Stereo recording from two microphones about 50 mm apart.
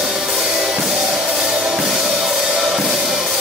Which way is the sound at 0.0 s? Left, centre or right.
Centre.